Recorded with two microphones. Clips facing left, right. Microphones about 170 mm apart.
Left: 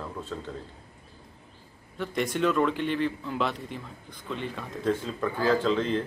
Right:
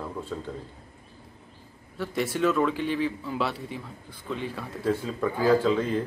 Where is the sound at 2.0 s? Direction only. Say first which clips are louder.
Right 1 dB; 5° right (ahead or behind).